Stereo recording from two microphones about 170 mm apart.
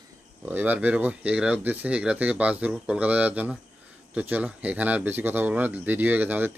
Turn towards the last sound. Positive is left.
turn(degrees=-10)  # may be behind; listen again after turning